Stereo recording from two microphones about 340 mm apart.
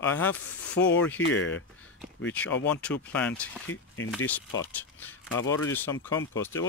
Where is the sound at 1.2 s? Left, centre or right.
Left.